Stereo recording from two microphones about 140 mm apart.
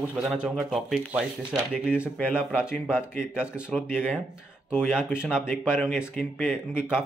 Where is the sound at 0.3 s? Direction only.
Centre (ahead or behind).